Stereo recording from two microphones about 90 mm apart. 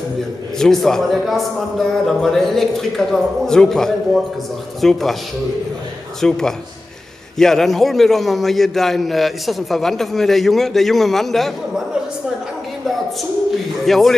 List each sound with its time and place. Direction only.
0.6 s a man's voice: 5° left (ahead or behind)
6.2 s a man's voice: 5° left (ahead or behind)
13.8 s a man's voice: 5° left (ahead or behind)